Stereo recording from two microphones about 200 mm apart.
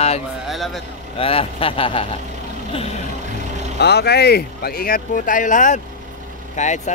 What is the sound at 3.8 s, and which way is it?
Speech, 55° left (ahead or behind).